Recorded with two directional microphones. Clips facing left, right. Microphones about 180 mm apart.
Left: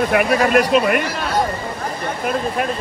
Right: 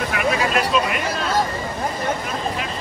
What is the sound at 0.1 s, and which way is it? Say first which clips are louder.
Speech: left 4 dB; 55° left (ahead or behind).